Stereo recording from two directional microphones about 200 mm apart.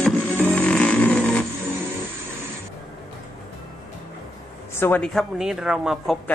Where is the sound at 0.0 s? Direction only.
10° left (ahead or behind).